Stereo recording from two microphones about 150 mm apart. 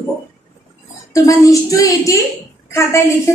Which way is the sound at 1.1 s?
20° left (ahead or behind).